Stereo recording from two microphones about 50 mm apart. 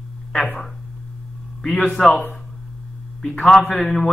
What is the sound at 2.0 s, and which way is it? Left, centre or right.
A man's voice, centre.